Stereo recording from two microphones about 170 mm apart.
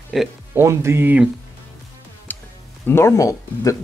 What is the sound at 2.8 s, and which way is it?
Speech, 15° left (ahead or behind).